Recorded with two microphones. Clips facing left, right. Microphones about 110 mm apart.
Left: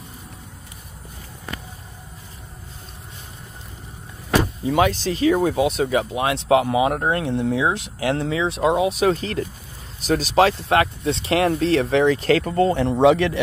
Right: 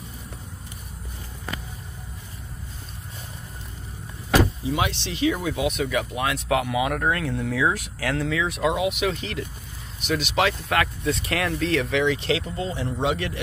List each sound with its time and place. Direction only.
4.6 s speech: 45° left (ahead or behind)
5.6 s speech: 30° left (ahead or behind); by 13.4 s 80° left